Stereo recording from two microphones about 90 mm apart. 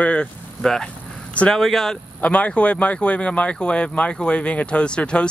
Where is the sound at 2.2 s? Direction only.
15° left (ahead or behind).